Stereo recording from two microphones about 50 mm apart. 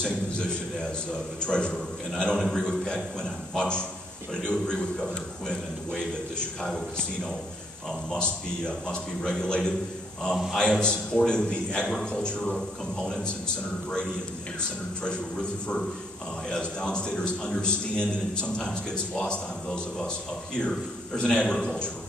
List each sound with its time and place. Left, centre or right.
0.0 s a man's voice: centre
10.3 s a man's voice: centre
10.6 s a man's voice: centre